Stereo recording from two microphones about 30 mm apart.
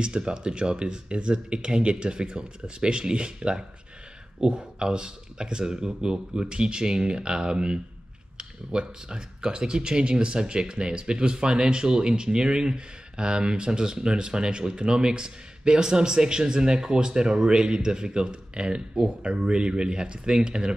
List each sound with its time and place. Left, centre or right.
0.0 s speech: right